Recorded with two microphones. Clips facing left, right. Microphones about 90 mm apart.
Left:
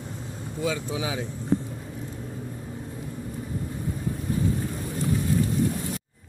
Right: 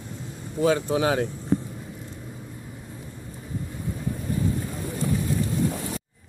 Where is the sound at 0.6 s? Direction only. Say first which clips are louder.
Right 7 dB; 50° right (ahead or behind).